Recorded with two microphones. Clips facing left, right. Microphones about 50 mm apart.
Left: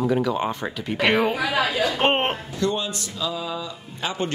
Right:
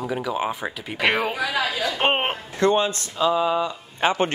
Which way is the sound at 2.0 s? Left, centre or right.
Centre.